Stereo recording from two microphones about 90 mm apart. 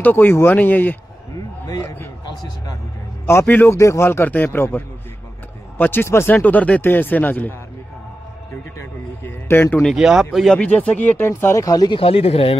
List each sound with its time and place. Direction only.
0.0 s speech: 25° left (ahead or behind)
3.3 s speech: 25° left (ahead or behind)
6.3 s speech: 15° left (ahead or behind)
9.2 s a man's voice: 25° left (ahead or behind)
9.9 s speech: 5° right (ahead or behind)
10.5 s speech: 15° left (ahead or behind)
11.2 s speech: 30° left (ahead or behind)
11.6 s speech: 45° left (ahead or behind)
11.9 s speech: 90° left